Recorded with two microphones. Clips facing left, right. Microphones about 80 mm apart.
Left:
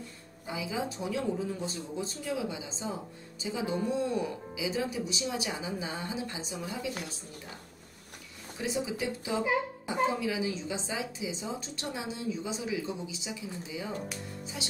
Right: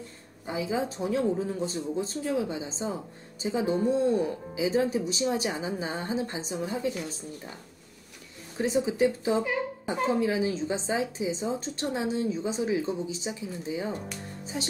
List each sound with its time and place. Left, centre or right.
0.5 s a woman's voice: right
6.9 s a woman's voice: left
8.5 s a woman's voice: right